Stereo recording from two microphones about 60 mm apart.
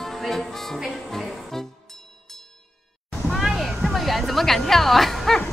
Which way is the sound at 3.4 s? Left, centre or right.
Centre.